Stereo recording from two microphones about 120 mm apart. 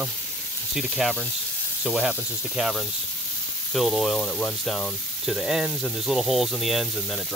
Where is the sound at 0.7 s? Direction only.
Centre (ahead or behind).